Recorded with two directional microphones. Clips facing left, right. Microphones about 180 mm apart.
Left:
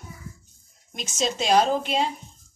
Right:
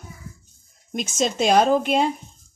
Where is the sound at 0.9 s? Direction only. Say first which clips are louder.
Right 4 dB; 50° right (ahead or behind).